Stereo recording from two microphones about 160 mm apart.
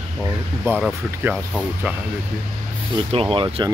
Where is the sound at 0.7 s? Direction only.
15° right (ahead or behind).